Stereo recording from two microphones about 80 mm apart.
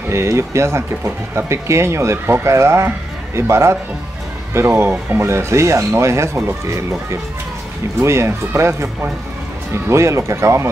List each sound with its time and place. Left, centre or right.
0.1 s speech: right
8.0 s speech: right
9.8 s speech: right